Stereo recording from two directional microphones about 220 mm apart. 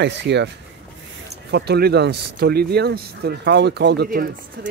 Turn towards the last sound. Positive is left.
turn(degrees=-50)  # may be behind; listen again after turning